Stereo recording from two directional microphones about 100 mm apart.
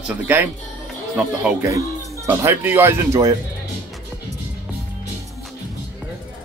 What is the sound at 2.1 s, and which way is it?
Speech, 35° right (ahead or behind).